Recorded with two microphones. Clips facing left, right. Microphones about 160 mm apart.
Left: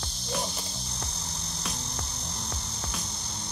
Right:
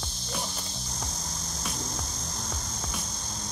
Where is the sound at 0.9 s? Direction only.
65° left (ahead or behind).